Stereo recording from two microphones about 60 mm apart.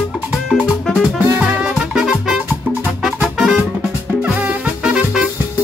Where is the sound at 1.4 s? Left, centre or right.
Centre.